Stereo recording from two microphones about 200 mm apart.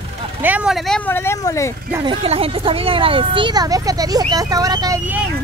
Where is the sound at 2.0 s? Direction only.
25° right (ahead or behind).